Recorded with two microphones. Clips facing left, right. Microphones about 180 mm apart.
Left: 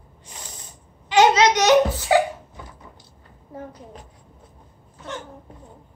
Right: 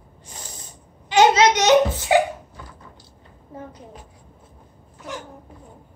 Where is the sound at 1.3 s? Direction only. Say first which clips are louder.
Right 1 dB; 25° right (ahead or behind).